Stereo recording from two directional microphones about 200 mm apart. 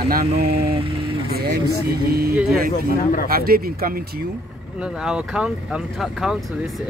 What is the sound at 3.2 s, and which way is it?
Speech, 50° right (ahead or behind).